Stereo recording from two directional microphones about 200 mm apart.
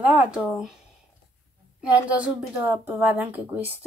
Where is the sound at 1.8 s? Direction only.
5° right (ahead or behind).